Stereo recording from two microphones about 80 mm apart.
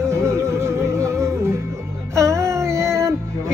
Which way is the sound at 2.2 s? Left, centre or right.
Right.